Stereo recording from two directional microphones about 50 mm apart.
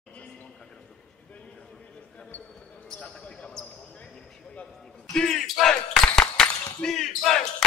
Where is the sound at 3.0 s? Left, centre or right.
Left.